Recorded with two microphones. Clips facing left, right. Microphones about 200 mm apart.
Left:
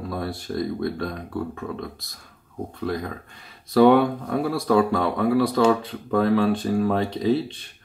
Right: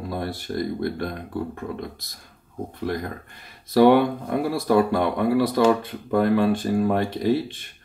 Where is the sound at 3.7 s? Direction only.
5° right (ahead or behind).